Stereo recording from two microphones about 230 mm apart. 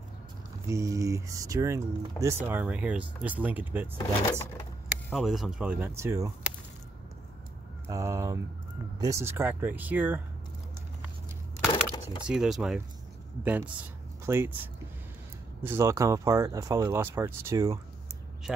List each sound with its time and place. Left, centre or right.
0.7 s speech: centre
5.1 s speech: centre
7.9 s speech: centre
11.7 s a sound: centre
12.2 s speech: centre
15.6 s speech: centre